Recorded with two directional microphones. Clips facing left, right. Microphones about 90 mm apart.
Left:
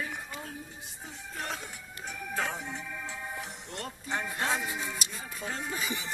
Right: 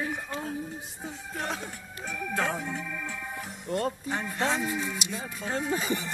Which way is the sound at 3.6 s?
45° right (ahead or behind).